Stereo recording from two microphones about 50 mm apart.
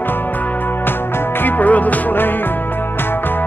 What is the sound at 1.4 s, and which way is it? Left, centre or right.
Music, left.